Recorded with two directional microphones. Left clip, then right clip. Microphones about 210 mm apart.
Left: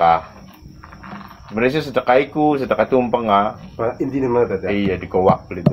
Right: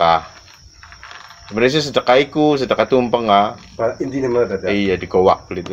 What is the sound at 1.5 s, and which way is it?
Speech, 40° right (ahead or behind).